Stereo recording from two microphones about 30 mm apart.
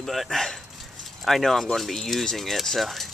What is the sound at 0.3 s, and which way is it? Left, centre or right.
Speech, centre.